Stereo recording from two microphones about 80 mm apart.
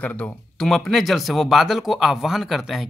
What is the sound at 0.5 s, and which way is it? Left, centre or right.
Speech, centre.